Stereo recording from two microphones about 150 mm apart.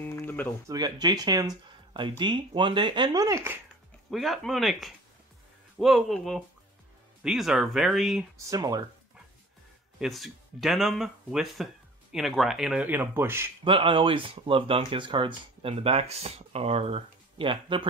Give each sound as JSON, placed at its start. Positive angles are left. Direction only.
{"t": 0.1, "sound": "music", "side_deg": 15}
{"t": 0.7, "sound": "speech", "side_deg": -25}
{"t": 4.1, "sound": "speech", "side_deg": 0}
{"t": 8.4, "sound": "speech", "side_deg": -25}
{"t": 9.9, "sound": "speech", "side_deg": 0}
{"t": 13.7, "sound": "speech", "side_deg": -35}